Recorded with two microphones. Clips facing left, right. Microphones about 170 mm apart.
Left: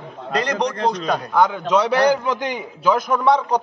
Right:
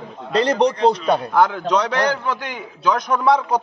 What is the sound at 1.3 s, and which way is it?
Speech, 5° right (ahead or behind).